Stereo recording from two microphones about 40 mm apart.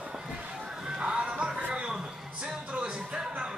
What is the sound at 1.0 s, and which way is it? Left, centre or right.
Music, right.